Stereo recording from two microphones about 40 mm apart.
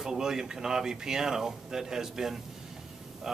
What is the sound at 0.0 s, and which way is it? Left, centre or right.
A man's voice, centre.